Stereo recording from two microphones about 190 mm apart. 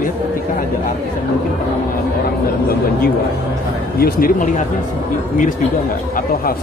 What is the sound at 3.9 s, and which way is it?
Speech, 50° left (ahead or behind).